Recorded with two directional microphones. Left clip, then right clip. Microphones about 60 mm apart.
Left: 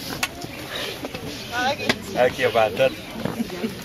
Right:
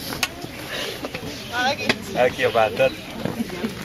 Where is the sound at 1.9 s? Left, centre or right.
Centre.